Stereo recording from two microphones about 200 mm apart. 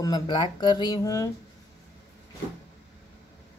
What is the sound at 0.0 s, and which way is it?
Speech, 20° left (ahead or behind).